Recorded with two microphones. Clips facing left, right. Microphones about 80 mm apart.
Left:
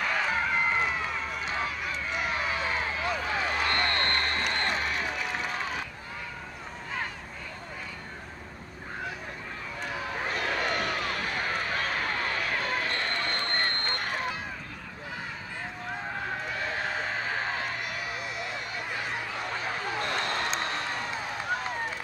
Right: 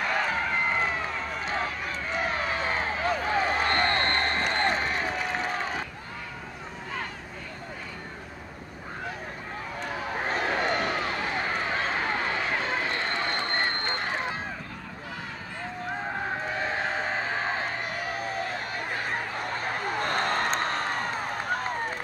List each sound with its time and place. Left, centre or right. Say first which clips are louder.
0.0 s run: right 2 dB; centre
1.4 s run: right 2 dB; right
10.2 s run: right 3 dB; right
16.5 s a sound: right 3 dB; right